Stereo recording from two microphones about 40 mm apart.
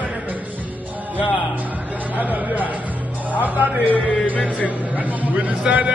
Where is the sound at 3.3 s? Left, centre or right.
Right.